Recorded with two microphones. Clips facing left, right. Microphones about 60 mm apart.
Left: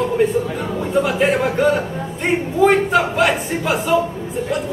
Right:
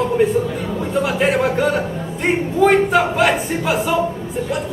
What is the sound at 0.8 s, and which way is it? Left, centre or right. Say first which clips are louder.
A man's voice: left 1 dB; centre.